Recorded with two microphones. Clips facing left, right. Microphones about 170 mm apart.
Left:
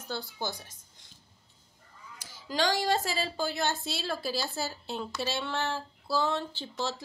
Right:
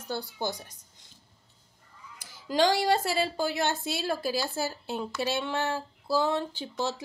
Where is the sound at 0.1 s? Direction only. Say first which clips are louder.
Right 3 dB; 15° right (ahead or behind).